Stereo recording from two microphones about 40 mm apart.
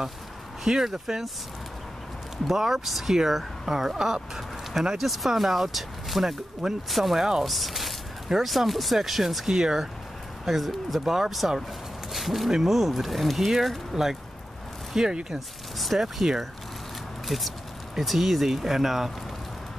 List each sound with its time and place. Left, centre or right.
0.7 s speech: centre
2.4 s speech: centre
15.3 s speech: centre